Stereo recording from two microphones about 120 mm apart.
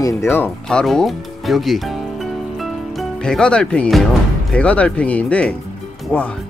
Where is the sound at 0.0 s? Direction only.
25° left (ahead or behind).